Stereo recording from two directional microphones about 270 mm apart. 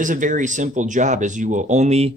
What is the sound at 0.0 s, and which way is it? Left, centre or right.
Speech, right.